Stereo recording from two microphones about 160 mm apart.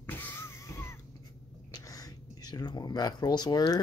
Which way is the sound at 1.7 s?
20° left (ahead or behind).